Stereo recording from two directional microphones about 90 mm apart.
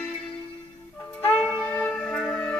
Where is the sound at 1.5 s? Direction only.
15° left (ahead or behind).